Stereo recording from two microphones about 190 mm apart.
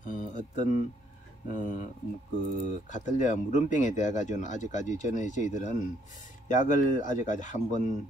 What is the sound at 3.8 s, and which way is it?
Speech, 40° left (ahead or behind).